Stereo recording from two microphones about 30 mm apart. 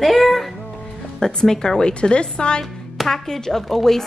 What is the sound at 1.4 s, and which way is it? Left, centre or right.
Speech, left.